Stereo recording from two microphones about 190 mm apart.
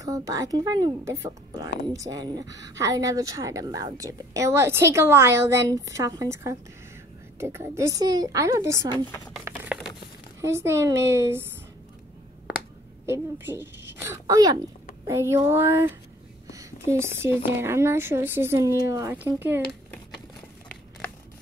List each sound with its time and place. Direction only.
0.0 s speech: 15° right (ahead or behind)
7.3 s speech: 15° right (ahead or behind)
9.4 s a sound: 10° right (ahead or behind)
10.4 s speech: 15° right (ahead or behind)
13.0 s a woman's voice: 15° right (ahead or behind)